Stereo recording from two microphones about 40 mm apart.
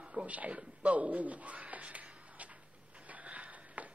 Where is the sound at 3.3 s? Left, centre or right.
Right.